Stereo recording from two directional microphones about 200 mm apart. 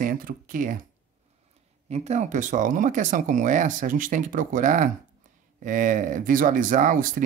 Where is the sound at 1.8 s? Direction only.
35° right (ahead or behind).